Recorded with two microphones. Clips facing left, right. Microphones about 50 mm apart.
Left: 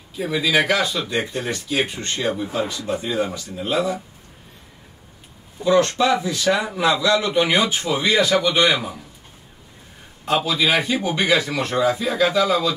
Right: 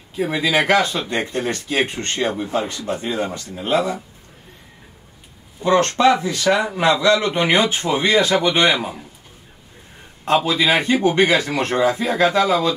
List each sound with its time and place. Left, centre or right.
0.1 s speech: right
5.6 s speech: right
10.2 s speech: right